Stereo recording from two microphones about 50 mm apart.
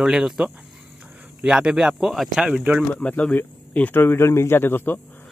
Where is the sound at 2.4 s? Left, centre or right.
Centre.